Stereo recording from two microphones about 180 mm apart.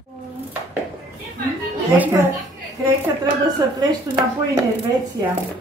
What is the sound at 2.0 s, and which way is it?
Speech, 10° right (ahead or behind).